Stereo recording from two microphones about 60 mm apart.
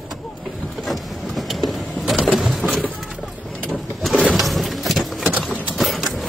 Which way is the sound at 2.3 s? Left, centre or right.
Centre.